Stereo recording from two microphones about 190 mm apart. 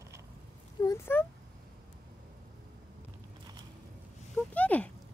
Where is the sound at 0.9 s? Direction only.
10° left (ahead or behind).